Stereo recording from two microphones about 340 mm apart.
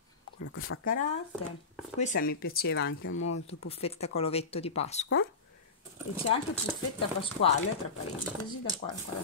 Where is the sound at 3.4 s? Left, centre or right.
Centre.